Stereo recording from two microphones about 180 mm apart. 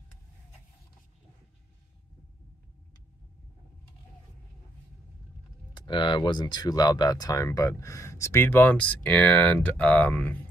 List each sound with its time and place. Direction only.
5.8 s speech: 25° left (ahead or behind); by 10.4 s 10° left (ahead or behind)